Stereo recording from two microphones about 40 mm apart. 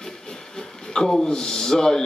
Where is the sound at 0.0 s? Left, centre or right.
Centre.